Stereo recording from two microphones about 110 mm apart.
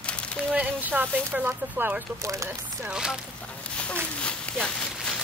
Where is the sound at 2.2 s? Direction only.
30° right (ahead or behind).